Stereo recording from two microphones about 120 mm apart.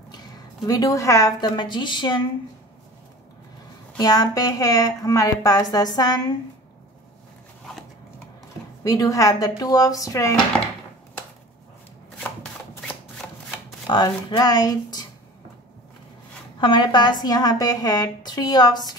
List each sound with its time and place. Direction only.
0.7 s a woman's voice: 30° left (ahead or behind)
4.0 s a woman's voice: 35° left (ahead or behind)
8.8 s speech: 30° left (ahead or behind)
13.8 s a woman's voice: 35° left (ahead or behind)
16.5 s a woman's voice: 40° left (ahead or behind)